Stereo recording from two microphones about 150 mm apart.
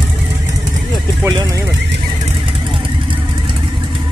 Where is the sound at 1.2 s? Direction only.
20° right (ahead or behind).